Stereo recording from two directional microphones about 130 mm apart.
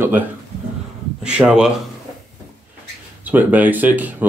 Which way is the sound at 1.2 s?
10° right (ahead or behind).